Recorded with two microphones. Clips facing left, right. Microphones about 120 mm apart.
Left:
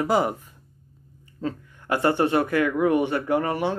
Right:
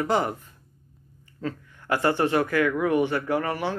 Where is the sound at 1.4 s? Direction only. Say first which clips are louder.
Left 2 dB; 20° left (ahead or behind).